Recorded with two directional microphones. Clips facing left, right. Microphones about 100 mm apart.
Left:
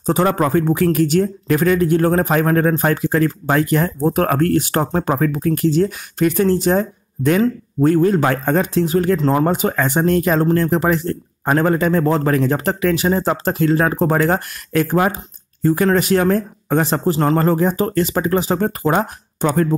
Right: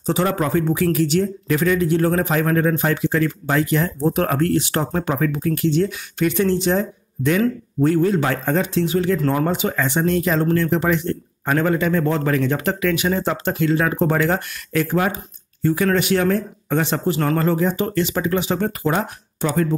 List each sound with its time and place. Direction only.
0.0 s speech: 45° left (ahead or behind)
17.4 s speech: 45° left (ahead or behind)